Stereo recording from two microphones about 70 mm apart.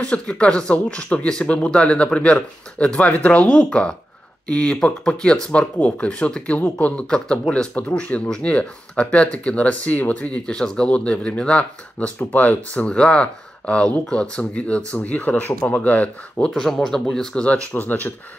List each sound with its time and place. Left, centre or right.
0.0 s speech: centre
16.4 s speech: centre
17.5 s speech: left